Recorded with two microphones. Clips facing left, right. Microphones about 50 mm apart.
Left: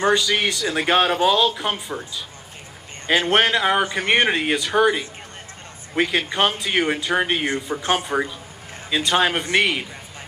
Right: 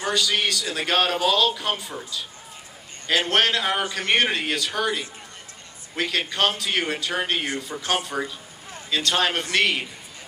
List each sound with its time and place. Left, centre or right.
0.4 s a man's voice: left
3.1 s a man's voice: left